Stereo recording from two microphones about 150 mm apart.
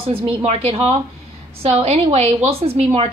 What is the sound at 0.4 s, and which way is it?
A woman's voice, 45° right (ahead or behind).